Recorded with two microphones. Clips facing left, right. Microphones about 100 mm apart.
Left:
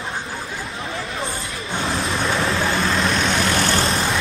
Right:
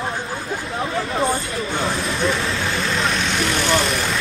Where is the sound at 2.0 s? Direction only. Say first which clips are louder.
Even; 30° left (ahead or behind).